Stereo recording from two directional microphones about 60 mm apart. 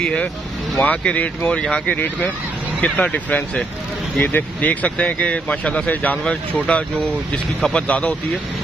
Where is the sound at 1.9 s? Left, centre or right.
Left.